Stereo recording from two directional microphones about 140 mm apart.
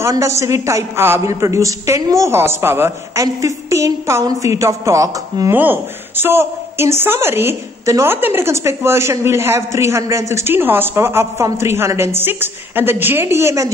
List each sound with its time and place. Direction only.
0.0 s a man's voice: 20° right (ahead or behind)